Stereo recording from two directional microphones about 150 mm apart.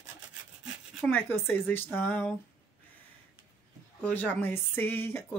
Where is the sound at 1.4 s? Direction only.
15° left (ahead or behind).